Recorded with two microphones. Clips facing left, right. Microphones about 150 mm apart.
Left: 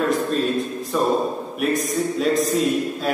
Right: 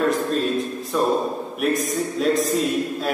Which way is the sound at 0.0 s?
Centre (ahead or behind).